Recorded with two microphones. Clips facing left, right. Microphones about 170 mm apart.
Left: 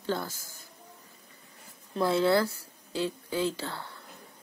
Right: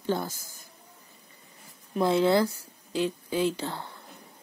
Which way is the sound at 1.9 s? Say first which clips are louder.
Right 2 dB; 20° right (ahead or behind).